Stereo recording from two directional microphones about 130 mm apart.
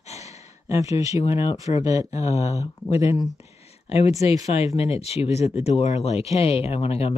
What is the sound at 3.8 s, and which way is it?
Speech, 50° left (ahead or behind).